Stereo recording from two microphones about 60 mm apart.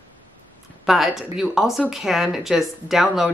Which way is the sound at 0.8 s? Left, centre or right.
Centre.